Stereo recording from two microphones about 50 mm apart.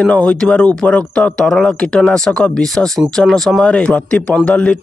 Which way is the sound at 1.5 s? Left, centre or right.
Centre.